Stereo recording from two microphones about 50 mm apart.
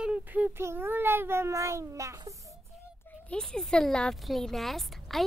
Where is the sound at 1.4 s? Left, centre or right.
Right.